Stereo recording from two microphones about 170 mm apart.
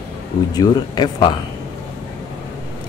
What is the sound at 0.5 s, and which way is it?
Speech, 25° left (ahead or behind).